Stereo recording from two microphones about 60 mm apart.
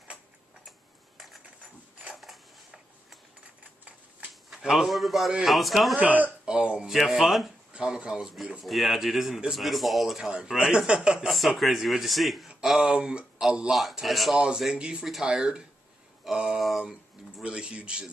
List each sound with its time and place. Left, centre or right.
0.7 s tick-tock: centre
1.6 s a sound: centre
2.1 s a sound: centre
4.5 s a man's voice: centre
5.9 s speech: right
7.0 s speech: centre
7.7 s speech: centre
8.6 s speech: centre
12.9 s speech: centre
14.3 s speech: centre